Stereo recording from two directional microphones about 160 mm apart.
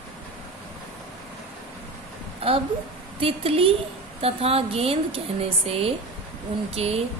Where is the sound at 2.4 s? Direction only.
35° right (ahead or behind).